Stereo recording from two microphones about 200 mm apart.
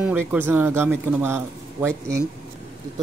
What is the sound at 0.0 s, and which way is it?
Speech, 5° right (ahead or behind).